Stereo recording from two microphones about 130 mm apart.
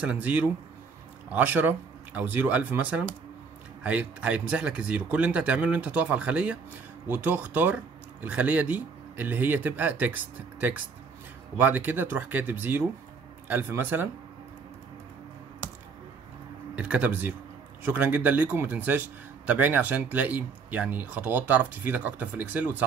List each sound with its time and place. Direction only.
0.0 s a man's voice: 10° right (ahead or behind)
16.7 s a man's voice: 10° right (ahead or behind)